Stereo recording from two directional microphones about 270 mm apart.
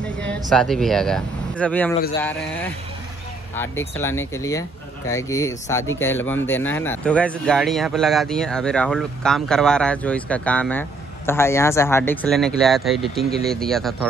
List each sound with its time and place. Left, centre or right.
0.5 s speech: centre
3.5 s speech: centre